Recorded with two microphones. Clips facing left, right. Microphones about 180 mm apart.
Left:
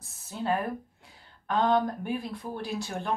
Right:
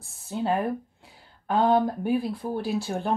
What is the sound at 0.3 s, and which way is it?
Speech, 25° right (ahead or behind).